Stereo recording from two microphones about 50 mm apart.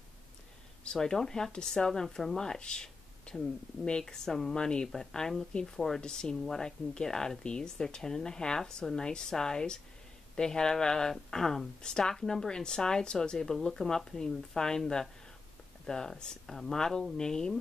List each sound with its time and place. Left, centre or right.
0.9 s speech: centre
5.5 s speech: left